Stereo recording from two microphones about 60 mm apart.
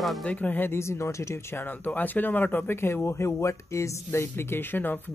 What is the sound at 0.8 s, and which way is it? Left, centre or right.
Speech, left.